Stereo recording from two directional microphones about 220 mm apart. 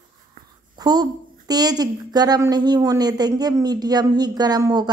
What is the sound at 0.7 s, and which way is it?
A woman's voice, 15° right (ahead or behind).